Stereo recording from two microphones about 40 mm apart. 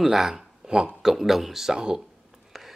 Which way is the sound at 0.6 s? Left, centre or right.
Centre.